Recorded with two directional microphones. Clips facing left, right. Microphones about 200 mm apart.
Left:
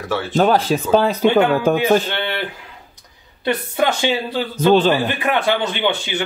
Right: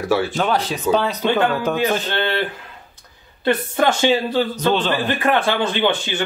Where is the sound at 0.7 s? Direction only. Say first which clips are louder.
Left 8 dB; 50° left (ahead or behind).